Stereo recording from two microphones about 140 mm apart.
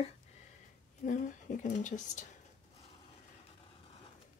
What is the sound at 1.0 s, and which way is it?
A woman's voice, 65° left (ahead or behind).